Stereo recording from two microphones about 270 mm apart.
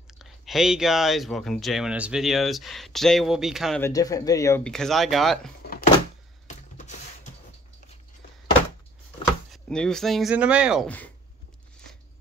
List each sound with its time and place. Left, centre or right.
0.2 s speech: centre
9.5 s speech: centre